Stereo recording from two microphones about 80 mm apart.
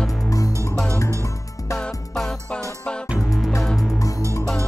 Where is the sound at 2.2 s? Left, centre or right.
Centre.